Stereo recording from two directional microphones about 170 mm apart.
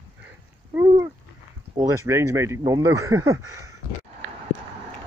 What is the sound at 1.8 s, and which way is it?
Speech, 20° right (ahead or behind).